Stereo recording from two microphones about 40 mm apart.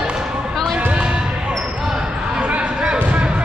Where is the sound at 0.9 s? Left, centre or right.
Right.